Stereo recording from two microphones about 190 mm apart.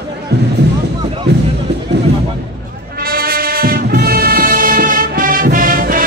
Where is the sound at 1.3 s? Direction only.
60° right (ahead or behind).